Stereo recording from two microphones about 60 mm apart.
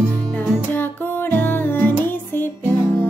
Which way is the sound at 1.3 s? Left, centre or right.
Left.